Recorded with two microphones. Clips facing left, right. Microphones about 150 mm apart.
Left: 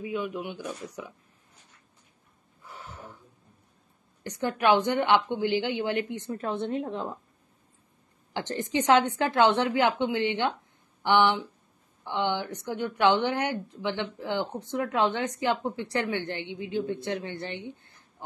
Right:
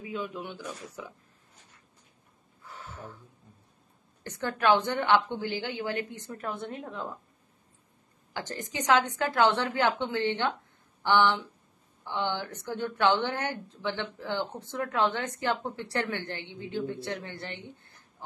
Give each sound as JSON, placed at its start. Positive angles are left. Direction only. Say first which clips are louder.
{"t": 0.0, "sound": "a woman's voice", "louder": "left 4 dB", "side_deg": 15}
{"t": 2.6, "sound": "snort", "louder": "even", "side_deg": 15}
{"t": 4.2, "sound": "a woman's voice", "louder": "left 2 dB", "side_deg": 15}
{"t": 8.3, "sound": "a woman's voice", "louder": "left 6 dB", "side_deg": 25}